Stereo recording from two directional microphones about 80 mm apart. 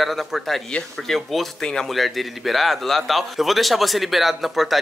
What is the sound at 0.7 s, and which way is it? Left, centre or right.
Speech, centre.